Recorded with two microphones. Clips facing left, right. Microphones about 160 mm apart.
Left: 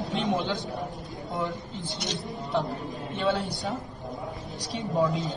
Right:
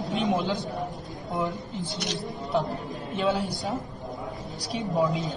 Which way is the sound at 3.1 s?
Centre (ahead or behind).